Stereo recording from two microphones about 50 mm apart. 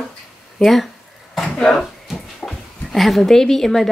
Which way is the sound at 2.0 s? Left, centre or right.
Centre.